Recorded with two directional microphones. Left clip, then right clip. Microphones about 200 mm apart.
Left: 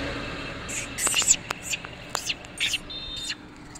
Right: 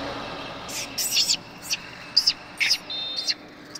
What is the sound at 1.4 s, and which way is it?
Whispering, 40° left (ahead or behind).